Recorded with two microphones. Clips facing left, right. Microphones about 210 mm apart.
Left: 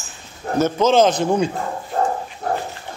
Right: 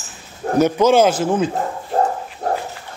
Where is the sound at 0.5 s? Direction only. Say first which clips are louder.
Right 2 dB; 10° right (ahead or behind).